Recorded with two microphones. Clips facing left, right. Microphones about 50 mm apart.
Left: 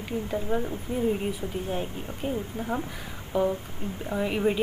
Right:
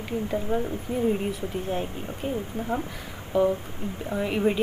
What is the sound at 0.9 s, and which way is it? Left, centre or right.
Speech, right.